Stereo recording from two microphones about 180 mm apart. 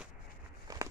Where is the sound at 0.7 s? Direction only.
20° right (ahead or behind).